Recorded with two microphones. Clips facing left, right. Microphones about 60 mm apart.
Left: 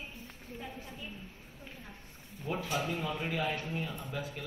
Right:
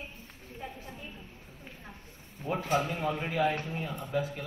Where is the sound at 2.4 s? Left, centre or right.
Right.